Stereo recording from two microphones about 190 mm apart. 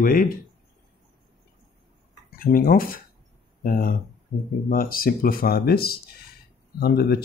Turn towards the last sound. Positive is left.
turn(degrees=55)  # may be behind; listen again after turning